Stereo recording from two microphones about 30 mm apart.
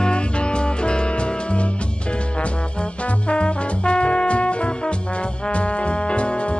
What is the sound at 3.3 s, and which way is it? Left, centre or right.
Music, left.